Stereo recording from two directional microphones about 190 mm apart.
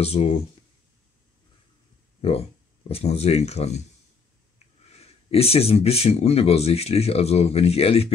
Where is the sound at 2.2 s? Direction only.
30° left (ahead or behind).